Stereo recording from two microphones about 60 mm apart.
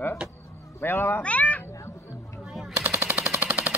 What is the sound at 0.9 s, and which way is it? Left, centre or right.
Cat, left.